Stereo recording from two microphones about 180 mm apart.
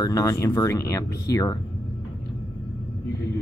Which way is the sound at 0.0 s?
15° left (ahead or behind).